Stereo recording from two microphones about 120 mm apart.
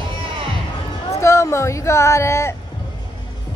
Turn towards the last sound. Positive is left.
turn(degrees=25)  # may be behind; listen again after turning